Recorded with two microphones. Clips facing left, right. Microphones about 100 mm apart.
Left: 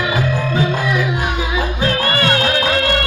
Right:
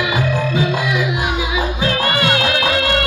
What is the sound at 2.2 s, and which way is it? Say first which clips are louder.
Music: left 2 dB; 35° left (ahead or behind).